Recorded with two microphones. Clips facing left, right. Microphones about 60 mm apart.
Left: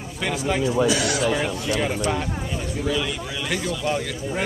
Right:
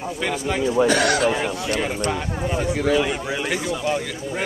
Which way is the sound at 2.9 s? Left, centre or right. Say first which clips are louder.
Right 5 dB; right.